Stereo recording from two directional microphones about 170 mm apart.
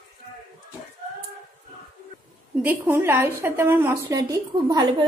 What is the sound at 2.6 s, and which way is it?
A woman's voice, 10° right (ahead or behind).